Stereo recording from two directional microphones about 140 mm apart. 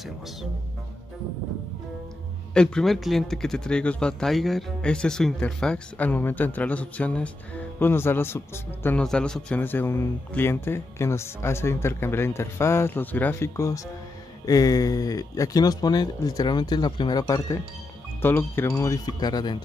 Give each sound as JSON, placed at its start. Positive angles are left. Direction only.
{"t": 2.5, "sound": "speech", "side_deg": 5}
{"t": 18.2, "sound": "speech", "side_deg": 15}